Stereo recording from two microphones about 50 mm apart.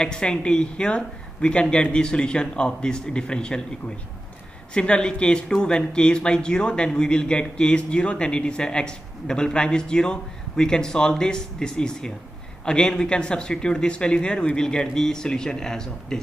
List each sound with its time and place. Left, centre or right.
0.0 s speech: centre
4.7 s speech: centre